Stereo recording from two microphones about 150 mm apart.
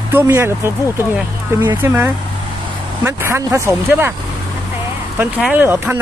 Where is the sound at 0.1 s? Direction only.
15° right (ahead or behind).